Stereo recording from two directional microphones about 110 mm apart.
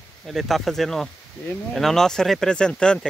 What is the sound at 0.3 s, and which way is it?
Speech, centre (ahead or behind).